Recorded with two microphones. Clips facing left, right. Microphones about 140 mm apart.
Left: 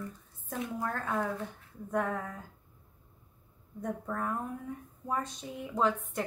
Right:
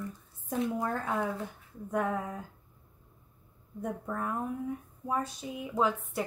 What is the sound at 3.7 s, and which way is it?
A woman's voice, 10° right (ahead or behind).